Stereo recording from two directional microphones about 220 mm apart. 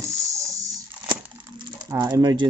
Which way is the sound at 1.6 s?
15° right (ahead or behind).